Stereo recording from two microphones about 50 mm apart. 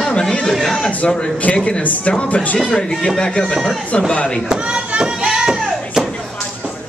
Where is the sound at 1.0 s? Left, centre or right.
Left.